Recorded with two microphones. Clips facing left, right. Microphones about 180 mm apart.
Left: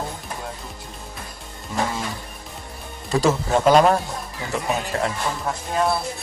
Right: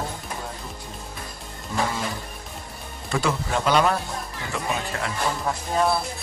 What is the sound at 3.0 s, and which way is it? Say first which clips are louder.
Speech: left 5 dB; 40° left (ahead or behind).